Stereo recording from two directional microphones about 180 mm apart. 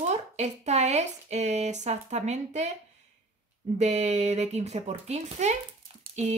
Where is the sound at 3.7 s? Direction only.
40° right (ahead or behind).